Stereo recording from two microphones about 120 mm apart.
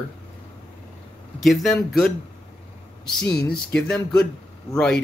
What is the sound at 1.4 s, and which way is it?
Speech, centre (ahead or behind).